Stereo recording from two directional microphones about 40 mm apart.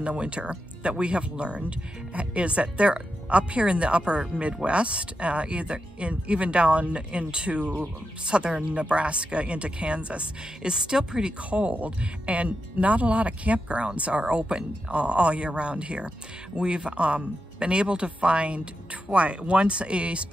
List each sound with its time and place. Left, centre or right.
0.0 s speech: right
10.7 s speech: centre
11.5 s speech: right